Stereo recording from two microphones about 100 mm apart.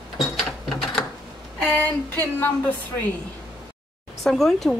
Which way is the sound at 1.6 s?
15° left (ahead or behind).